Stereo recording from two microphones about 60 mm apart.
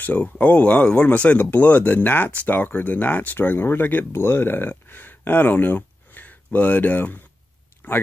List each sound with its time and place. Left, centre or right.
0.0 s speech: left